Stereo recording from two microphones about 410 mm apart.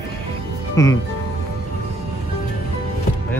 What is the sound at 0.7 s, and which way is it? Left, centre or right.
Speech, centre.